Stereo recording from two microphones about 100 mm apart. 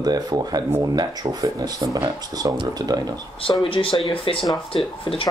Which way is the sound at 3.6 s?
65° left (ahead or behind).